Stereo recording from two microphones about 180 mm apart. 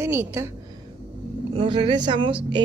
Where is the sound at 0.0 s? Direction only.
15° right (ahead or behind).